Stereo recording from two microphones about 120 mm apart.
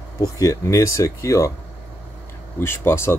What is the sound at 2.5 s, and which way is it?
Speech, 20° left (ahead or behind).